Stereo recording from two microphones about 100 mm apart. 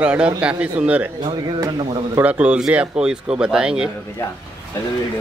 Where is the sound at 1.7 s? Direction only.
55° right (ahead or behind).